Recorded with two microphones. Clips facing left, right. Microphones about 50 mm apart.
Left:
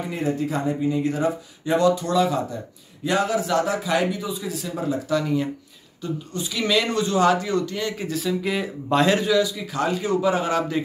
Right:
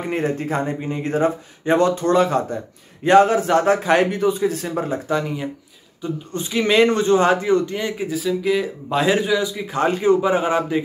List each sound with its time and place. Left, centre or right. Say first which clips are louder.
0.1 s speech: right 3 dB; right
5.1 s speech: even; centre
6.3 s speech: right 6 dB; right
8.1 s speech: right 6 dB; centre; by 10.8 s right